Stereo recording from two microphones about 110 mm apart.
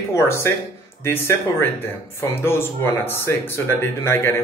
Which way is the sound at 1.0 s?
20° left (ahead or behind).